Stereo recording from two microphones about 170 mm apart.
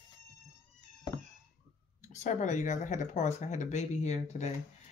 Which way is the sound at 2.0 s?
45° left (ahead or behind).